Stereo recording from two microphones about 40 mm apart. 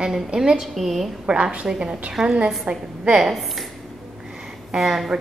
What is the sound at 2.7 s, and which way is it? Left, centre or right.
Speech, right.